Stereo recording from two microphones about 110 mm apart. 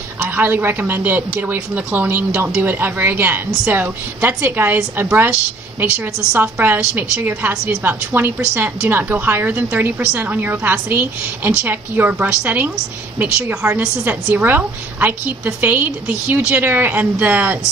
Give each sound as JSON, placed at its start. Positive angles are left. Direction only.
{"t": 0.2, "sound": "a woman's voice", "side_deg": -20}
{"t": 13.7, "sound": "a woman's voice", "side_deg": -15}